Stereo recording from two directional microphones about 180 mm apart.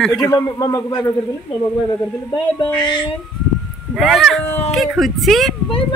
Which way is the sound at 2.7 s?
25° left (ahead or behind).